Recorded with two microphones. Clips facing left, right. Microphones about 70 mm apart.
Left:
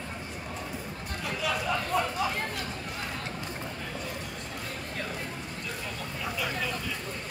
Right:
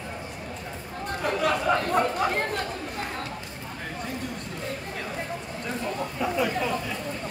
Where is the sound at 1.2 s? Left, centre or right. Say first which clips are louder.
Right 6 dB; right.